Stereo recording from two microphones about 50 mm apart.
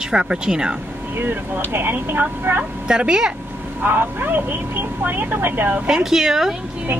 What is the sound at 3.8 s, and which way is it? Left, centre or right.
Speech, right.